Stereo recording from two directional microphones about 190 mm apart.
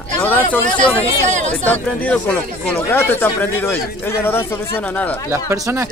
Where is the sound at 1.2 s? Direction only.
40° right (ahead or behind).